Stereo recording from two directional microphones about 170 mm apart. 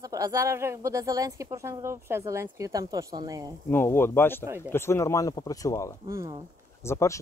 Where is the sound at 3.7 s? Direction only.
15° left (ahead or behind).